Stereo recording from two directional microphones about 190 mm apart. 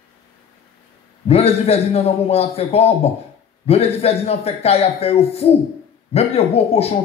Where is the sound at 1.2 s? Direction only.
30° left (ahead or behind).